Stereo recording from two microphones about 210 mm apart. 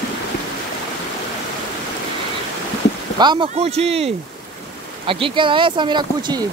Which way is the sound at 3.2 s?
20° right (ahead or behind).